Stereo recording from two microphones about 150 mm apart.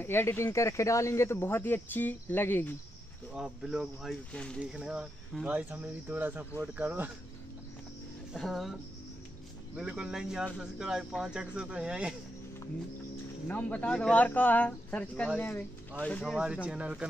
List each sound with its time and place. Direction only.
0.0 s speech: 15° left (ahead or behind)
3.3 s speech: 5° right (ahead or behind)
4.6 s speech: 5° right (ahead or behind)
8.3 s speech: centre (ahead or behind)
9.8 s speech: 5° right (ahead or behind)
13.5 s speech: 10° left (ahead or behind)
16.6 s speech: 5° right (ahead or behind)